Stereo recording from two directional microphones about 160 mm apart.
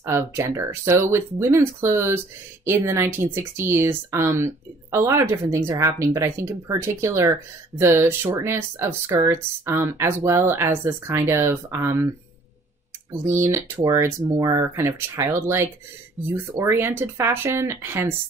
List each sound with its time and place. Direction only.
0.0 s speech: 15° right (ahead or behind)
13.1 s speech: 15° right (ahead or behind)